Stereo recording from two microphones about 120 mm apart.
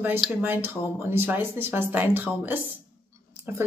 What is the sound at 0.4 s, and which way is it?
Speech, 20° right (ahead or behind).